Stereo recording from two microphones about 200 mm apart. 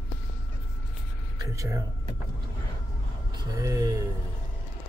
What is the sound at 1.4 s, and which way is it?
Speech, 15° right (ahead or behind).